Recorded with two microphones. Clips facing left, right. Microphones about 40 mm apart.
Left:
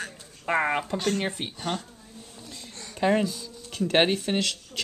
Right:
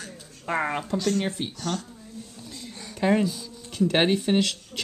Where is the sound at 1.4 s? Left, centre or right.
Left.